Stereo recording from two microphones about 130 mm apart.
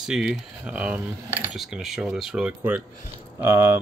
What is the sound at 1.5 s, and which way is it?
Speech, 5° right (ahead or behind).